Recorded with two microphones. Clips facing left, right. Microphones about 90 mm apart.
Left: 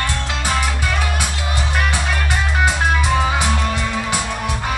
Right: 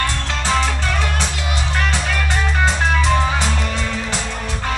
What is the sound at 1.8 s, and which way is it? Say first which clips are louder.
Music: even; 15° left (ahead or behind).